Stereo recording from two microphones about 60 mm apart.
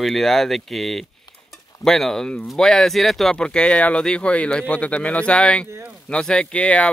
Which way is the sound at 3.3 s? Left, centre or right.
Centre.